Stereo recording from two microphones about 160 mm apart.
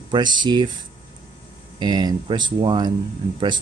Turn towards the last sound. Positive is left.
turn(degrees=-30)  # may be behind; listen again after turning